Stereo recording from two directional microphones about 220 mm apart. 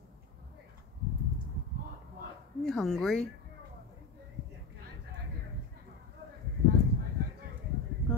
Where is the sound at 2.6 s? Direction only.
Centre (ahead or behind).